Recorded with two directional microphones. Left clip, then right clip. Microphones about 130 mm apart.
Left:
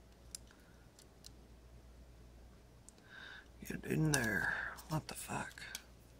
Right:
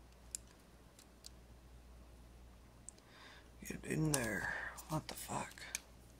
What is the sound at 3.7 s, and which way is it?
Speech, 35° left (ahead or behind).